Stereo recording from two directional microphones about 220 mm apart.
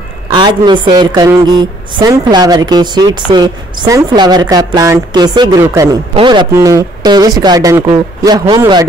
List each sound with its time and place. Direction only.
0.3 s a woman's voice: 20° right (ahead or behind)